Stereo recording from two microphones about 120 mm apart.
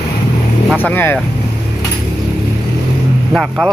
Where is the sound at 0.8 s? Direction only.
15° left (ahead or behind).